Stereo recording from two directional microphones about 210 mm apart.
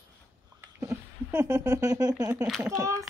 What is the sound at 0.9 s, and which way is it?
Speech, 10° right (ahead or behind).